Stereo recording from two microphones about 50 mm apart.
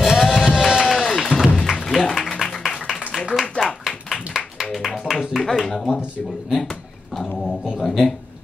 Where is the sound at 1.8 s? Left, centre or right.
Centre.